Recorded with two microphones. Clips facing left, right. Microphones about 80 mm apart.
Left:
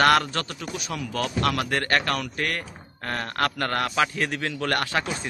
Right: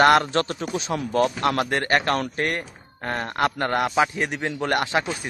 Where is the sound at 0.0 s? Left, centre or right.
Right.